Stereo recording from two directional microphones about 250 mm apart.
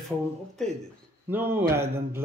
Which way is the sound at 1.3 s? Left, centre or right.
Centre.